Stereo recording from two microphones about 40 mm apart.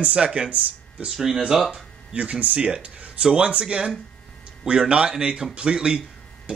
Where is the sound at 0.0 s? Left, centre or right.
Right.